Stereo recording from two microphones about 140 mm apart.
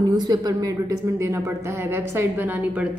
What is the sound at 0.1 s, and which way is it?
Speech, 25° right (ahead or behind).